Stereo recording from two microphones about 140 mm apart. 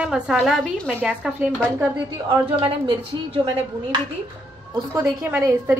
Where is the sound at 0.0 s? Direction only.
5° right (ahead or behind).